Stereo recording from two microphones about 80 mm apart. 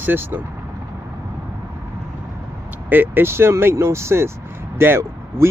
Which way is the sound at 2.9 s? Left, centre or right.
Right.